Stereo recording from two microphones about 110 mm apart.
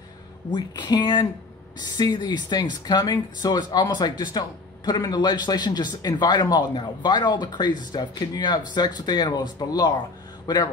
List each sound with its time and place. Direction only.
0.5 s speech: 40° left (ahead or behind)